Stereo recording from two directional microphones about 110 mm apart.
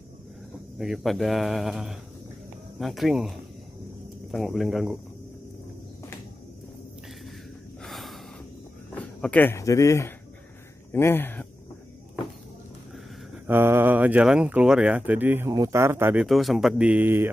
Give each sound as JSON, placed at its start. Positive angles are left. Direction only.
{"t": 0.7, "sound": "speech", "side_deg": 0}
{"t": 4.5, "sound": "speech", "side_deg": 0}
{"t": 7.8, "sound": "gasp", "side_deg": 0}
{"t": 8.9, "sound": "a sound", "side_deg": 10}
{"t": 9.6, "sound": "speech", "side_deg": 30}
{"t": 13.5, "sound": "speech", "side_deg": -20}
{"t": 15.5, "sound": "a man's voice", "side_deg": -30}
{"t": 16.2, "sound": "speech", "side_deg": 0}